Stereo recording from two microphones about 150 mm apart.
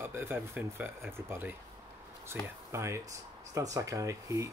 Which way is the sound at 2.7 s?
20° right (ahead or behind).